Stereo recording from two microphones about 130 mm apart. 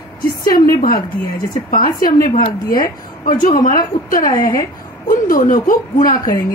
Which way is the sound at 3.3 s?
80° left.